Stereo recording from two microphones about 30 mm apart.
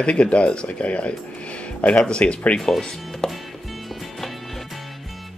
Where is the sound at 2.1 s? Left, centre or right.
Left.